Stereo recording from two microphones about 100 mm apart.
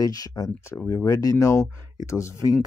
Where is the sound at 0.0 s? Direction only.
40° left (ahead or behind).